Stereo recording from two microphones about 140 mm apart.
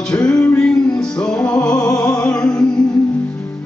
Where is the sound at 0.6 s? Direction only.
5° left (ahead or behind).